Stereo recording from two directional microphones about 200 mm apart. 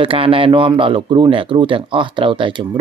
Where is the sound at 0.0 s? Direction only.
25° right (ahead or behind).